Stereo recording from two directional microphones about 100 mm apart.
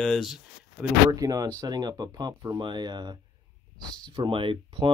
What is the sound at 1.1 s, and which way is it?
Speech, 35° right (ahead or behind).